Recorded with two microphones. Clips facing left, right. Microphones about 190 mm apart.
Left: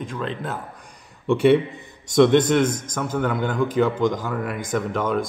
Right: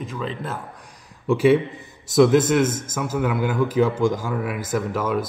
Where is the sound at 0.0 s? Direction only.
Centre (ahead or behind).